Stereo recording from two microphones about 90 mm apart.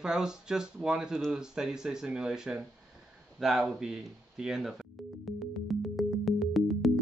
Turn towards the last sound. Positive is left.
turn(degrees=0)  # may be behind; listen again after turning